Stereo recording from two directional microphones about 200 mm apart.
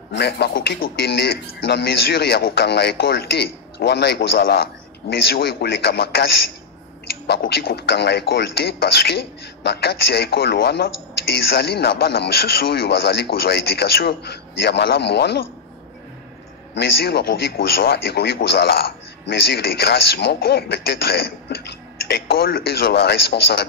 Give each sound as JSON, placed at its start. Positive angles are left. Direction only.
{"t": 0.1, "sound": "a man's voice", "side_deg": 55}
{"t": 7.2, "sound": "a man's voice", "side_deg": 55}
{"t": 16.7, "sound": "a man's voice", "side_deg": 55}